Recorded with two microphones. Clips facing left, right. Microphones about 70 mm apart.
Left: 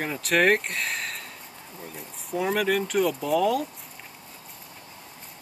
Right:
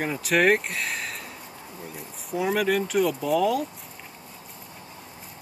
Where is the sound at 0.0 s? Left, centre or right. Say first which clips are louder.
Right 1 dB; centre.